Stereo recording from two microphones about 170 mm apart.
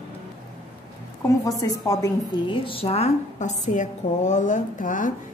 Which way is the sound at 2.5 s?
30° left (ahead or behind).